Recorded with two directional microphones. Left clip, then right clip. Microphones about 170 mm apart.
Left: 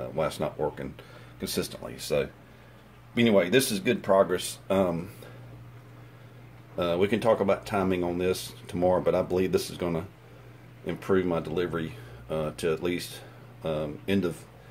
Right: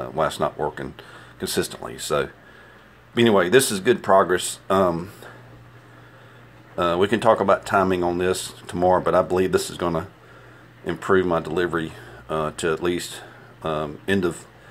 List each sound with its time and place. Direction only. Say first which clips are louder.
0.0 s speech: right 7 dB; 10° right (ahead or behind)
6.8 s speech: right 6 dB; 10° right (ahead or behind)